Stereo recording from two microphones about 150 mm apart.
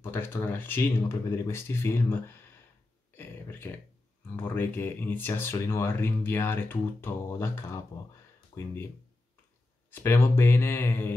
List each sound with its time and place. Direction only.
0.0 s speech: 15° left (ahead or behind)
3.2 s a sound: 15° left (ahead or behind)
4.4 s speech: 15° left (ahead or behind)
9.8 s speech: 15° left (ahead or behind)